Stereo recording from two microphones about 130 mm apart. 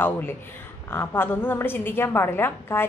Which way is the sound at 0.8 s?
15° left (ahead or behind).